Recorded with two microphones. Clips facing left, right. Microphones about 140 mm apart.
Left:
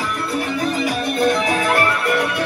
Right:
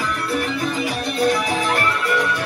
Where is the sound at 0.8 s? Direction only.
50° left (ahead or behind).